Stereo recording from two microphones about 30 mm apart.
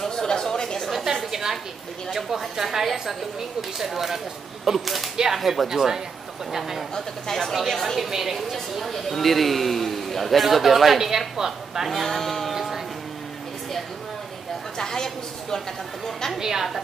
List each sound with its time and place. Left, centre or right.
0.1 s a sound: left
1.1 s a sound: centre
2.1 s a woman's voice: centre
7.2 s speech: centre
7.8 s speech: centre
8.1 s a woman's voice: centre
11.0 s a woman's voice: centre
11.9 s speech: centre
12.5 s music: centre
14.8 s a woman's voice: centre
16.3 s a woman's voice: centre